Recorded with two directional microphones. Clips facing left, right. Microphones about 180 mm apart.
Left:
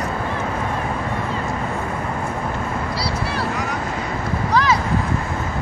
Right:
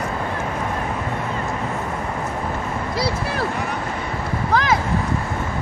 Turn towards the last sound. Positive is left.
turn(degrees=-55)  # may be behind; listen again after turning